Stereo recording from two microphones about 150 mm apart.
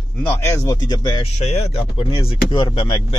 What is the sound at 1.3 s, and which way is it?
Speech, 45° left (ahead or behind).